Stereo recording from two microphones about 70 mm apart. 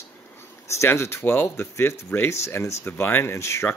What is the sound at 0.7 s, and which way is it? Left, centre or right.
Speech, left.